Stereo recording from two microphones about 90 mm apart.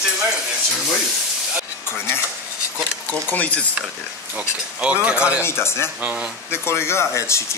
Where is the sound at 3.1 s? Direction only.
15° left (ahead or behind).